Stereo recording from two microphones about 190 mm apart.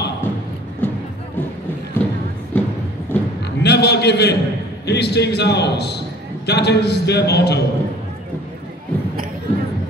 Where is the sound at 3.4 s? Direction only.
60° left (ahead or behind).